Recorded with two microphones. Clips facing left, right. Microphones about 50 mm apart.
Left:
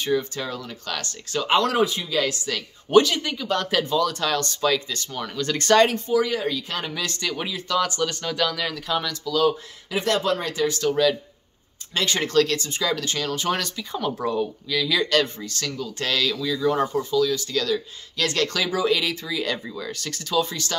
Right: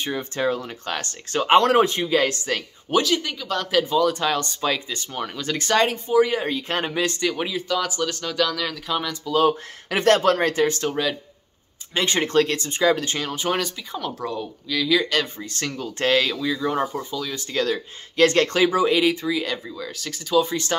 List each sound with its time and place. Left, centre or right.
0.0 s speech: right
2.9 s speech: centre
3.9 s speech: centre
6.1 s speech: right
6.4 s speech: right
7.2 s speech: centre
9.2 s speech: right
9.8 s speech: right
10.9 s speech: centre
13.9 s speech: centre
15.4 s speech: right
16.4 s speech: centre
17.1 s speech: right
19.4 s speech: centre; by 20.7 s right